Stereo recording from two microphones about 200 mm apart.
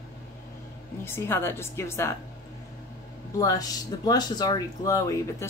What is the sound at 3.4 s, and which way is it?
Speech, 15° left (ahead or behind).